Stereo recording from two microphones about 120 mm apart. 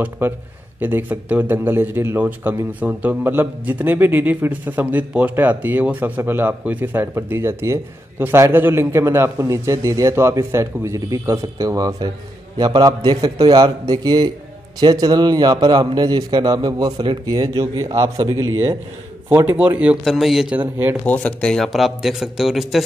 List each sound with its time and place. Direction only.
0.2 s a man's voice: 15° right (ahead or behind)
19.2 s a man's voice: 15° right (ahead or behind)
20.5 s a man's voice: 15° right (ahead or behind)
21.0 s speech: 10° left (ahead or behind)